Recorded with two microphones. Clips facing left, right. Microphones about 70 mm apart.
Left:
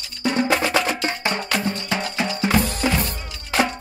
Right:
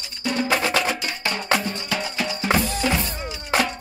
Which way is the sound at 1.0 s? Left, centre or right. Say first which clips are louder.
Left 4 dB; left.